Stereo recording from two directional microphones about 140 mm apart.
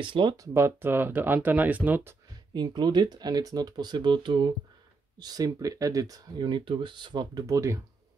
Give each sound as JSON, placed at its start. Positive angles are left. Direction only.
{"t": 0.0, "sound": "speech", "side_deg": -35}
{"t": 0.5, "sound": "speech", "side_deg": -20}
{"t": 2.5, "sound": "speech", "side_deg": -30}